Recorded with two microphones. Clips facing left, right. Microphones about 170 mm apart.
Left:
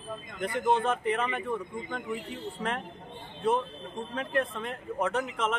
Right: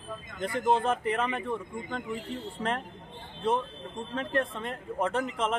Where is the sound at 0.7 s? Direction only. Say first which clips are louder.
Even; 30° right (ahead or behind).